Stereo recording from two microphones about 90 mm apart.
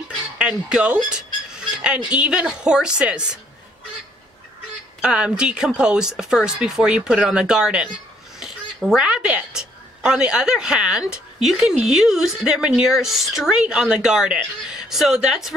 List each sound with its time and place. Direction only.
0.4 s speech: 10° right (ahead or behind)
5.0 s speech: 10° right (ahead or behind)